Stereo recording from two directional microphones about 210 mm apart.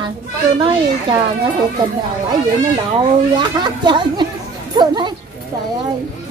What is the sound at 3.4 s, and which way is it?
Speech, 20° right (ahead or behind).